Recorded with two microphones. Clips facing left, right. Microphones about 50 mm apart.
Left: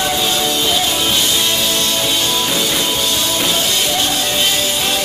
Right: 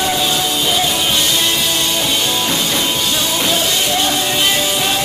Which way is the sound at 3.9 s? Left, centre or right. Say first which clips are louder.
Right 1 dB; centre.